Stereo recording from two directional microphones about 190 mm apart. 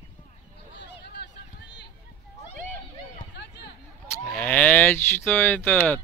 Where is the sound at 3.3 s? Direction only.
60° left (ahead or behind).